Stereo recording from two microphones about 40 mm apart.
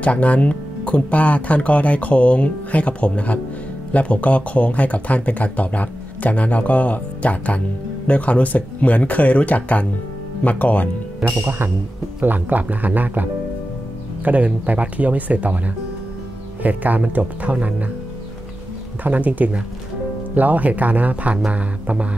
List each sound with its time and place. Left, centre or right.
0.0 s speech: left
12.2 s speech: right
19.0 s speech: right